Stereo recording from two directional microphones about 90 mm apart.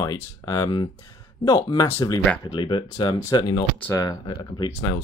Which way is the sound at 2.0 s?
45° left (ahead or behind).